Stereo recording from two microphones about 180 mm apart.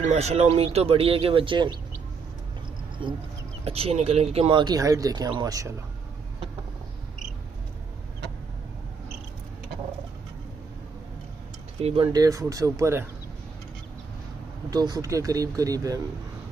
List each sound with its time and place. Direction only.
0.1 s speech: 35° right (ahead or behind)
3.0 s speech: 30° right (ahead or behind)
11.8 s speech: 30° right (ahead or behind)
14.7 s speech: 20° right (ahead or behind)